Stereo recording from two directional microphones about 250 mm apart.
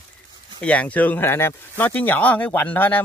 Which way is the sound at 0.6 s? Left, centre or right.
Centre.